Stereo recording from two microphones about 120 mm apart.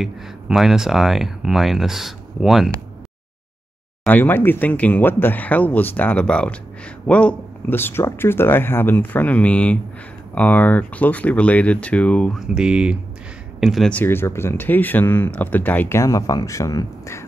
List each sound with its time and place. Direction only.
0.0 s speech: 5° right (ahead or behind)
4.1 s speech: 15° left (ahead or behind)
12.5 s speech: 10° right (ahead or behind)
13.8 s speech: 15° left (ahead or behind)